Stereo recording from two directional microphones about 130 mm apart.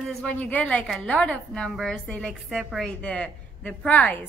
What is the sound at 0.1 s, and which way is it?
A woman's voice, 10° left (ahead or behind).